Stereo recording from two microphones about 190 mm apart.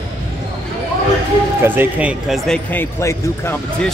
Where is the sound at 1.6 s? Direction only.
10° right (ahead or behind).